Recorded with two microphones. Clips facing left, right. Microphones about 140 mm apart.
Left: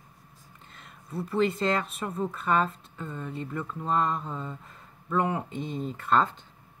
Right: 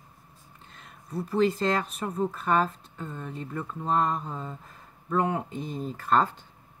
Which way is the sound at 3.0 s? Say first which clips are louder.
Left 1 dB; 30° right (ahead or behind).